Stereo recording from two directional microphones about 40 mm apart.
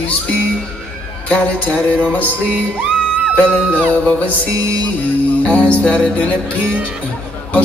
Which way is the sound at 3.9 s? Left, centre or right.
Left.